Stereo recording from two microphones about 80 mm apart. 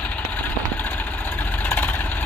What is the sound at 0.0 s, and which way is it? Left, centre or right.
Vehicle, left.